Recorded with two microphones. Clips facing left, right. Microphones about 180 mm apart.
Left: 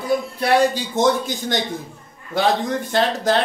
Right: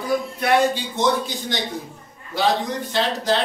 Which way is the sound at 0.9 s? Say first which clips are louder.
Left 3 dB; 50° left (ahead or behind).